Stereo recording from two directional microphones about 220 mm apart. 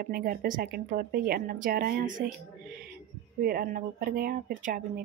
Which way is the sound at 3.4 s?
40° right (ahead or behind).